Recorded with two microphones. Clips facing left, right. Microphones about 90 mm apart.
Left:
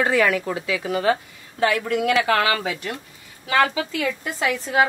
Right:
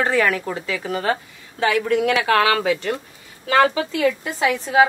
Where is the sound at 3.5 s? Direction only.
25° right (ahead or behind).